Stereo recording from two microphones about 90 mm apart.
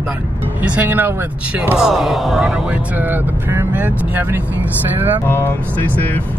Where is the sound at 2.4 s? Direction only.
15° right (ahead or behind).